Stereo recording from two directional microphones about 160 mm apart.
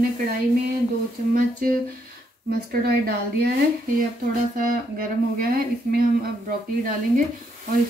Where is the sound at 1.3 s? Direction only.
55° right (ahead or behind).